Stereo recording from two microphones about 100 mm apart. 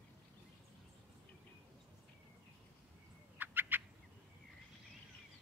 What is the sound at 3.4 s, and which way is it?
Turkey, 20° right (ahead or behind).